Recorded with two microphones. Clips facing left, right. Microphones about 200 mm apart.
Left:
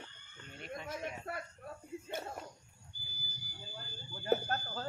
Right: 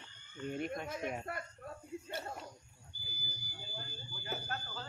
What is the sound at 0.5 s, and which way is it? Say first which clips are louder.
Speech: right 5 dB; 50° right (ahead or behind).